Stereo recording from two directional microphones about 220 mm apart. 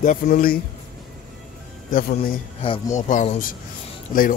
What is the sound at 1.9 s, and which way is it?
Speech, 40° left (ahead or behind).